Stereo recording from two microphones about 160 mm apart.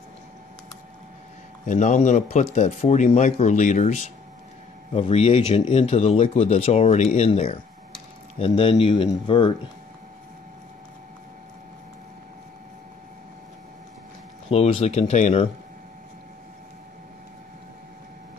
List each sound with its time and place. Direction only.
1.7 s speech: 45° left (ahead or behind); by 9.5 s 30° left (ahead or behind)
14.5 s speech: 40° left (ahead or behind)